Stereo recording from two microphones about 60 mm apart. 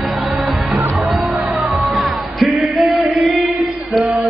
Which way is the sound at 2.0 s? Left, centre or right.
Centre.